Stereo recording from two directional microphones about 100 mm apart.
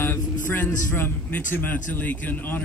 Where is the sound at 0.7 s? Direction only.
20° left (ahead or behind).